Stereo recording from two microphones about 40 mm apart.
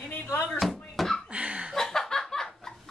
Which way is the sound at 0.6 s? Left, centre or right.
Centre.